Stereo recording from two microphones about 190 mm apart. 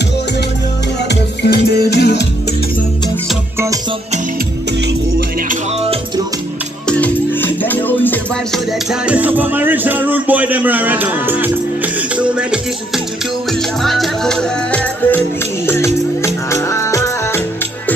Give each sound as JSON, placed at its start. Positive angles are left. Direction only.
{"t": 1.0, "sound": "music", "side_deg": 60}
{"t": 6.9, "sound": "music", "side_deg": 10}
{"t": 9.0, "sound": "music", "side_deg": -10}